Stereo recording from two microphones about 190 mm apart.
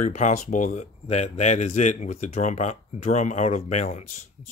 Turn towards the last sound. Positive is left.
turn(degrees=35)  # may be behind; listen again after turning